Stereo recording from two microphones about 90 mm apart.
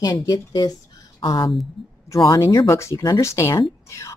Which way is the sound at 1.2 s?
70° left (ahead or behind).